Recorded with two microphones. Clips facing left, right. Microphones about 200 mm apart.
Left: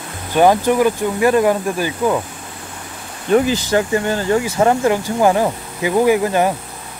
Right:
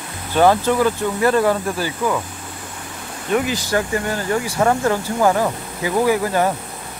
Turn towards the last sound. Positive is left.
turn(degrees=20)  # may be behind; listen again after turning